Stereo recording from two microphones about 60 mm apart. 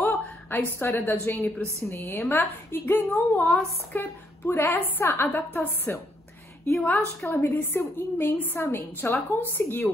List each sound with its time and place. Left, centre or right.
0.0 s a sound: left
0.7 s a woman's voice: left
7.3 s a woman's voice: left